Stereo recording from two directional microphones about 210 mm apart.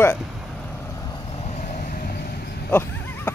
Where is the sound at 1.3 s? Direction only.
30° left (ahead or behind); by 2.4 s 45° left (ahead or behind).